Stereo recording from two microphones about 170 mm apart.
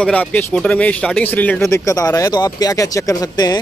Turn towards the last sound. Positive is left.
turn(degrees=20)  # may be behind; listen again after turning